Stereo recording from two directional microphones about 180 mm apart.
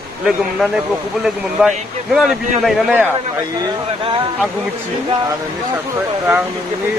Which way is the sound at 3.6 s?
30° right (ahead or behind).